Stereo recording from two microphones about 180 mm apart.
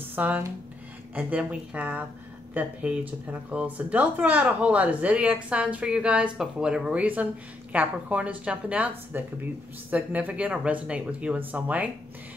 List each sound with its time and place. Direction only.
0.1 s speech: 10° right (ahead or behind)